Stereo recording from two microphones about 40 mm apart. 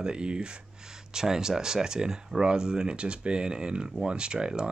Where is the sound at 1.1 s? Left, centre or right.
Centre.